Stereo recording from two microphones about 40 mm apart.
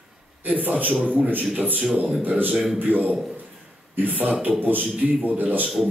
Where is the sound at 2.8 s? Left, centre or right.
Right.